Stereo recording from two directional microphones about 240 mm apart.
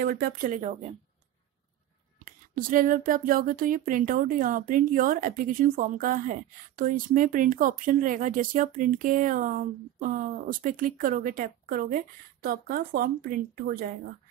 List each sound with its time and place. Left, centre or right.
0.0 s speech: right
2.2 s speech: right